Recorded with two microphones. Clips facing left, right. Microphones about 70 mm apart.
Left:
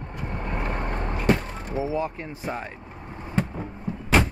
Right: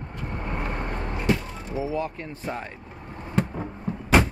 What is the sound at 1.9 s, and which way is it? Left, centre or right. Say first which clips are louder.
Speech: left 1 dB; centre.